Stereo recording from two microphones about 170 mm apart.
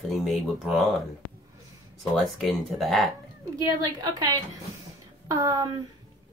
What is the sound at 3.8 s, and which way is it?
Speech, 25° right (ahead or behind).